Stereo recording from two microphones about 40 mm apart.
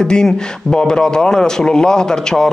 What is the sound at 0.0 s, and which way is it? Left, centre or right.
A man's voice, centre.